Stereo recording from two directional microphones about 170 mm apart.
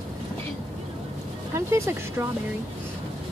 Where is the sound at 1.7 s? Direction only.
15° right (ahead or behind).